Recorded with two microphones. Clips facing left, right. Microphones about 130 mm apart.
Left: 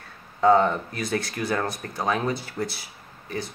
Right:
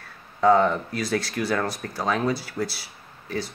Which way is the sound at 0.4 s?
20° left (ahead or behind).